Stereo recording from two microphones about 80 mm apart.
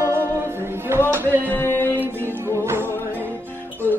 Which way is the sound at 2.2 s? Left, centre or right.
Right.